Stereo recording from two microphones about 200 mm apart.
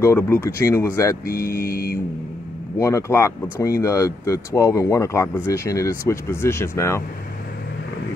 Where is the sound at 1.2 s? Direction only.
50° left (ahead or behind).